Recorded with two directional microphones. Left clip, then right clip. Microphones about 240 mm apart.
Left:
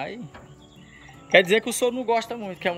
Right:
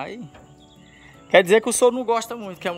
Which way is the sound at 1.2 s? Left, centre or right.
Centre.